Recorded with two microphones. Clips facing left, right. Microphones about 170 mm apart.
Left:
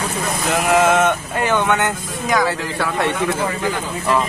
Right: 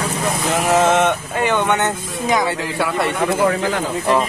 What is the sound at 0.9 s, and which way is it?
Speech, 20° right (ahead or behind).